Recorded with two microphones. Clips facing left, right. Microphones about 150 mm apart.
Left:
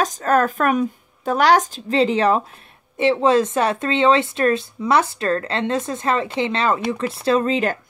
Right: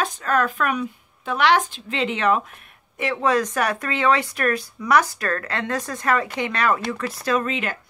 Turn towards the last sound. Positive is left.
turn(degrees=35)  # may be behind; listen again after turning